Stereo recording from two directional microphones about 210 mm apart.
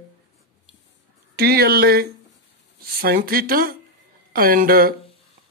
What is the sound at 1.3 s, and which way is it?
Speech, 45° right (ahead or behind).